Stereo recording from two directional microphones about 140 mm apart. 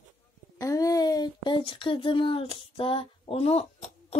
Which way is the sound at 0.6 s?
25° left (ahead or behind).